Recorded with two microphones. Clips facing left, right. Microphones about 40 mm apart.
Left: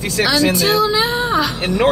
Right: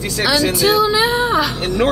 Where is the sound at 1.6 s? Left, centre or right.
Centre.